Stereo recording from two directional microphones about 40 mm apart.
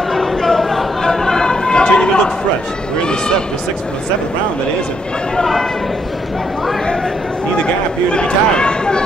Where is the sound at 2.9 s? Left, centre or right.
Left.